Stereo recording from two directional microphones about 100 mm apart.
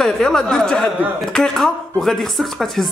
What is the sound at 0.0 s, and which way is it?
Speech, 5° left (ahead or behind).